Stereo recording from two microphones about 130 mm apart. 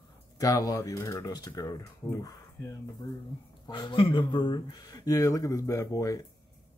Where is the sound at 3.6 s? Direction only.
40° left (ahead or behind).